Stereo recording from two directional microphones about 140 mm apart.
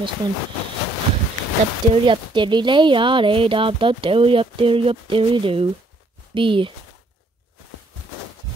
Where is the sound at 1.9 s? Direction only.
35° right (ahead or behind).